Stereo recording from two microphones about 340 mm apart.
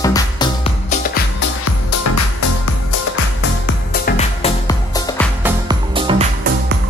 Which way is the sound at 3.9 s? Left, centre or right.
Left.